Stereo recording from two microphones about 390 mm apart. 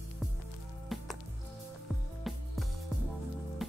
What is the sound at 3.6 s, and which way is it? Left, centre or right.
Music, centre.